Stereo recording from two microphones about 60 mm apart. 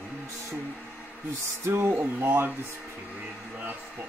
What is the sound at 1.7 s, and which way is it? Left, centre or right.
Speech, right.